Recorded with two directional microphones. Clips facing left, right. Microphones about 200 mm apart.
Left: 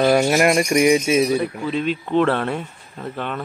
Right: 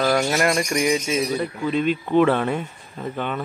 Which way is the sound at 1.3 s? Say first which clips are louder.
Left 3 dB; 5° left (ahead or behind).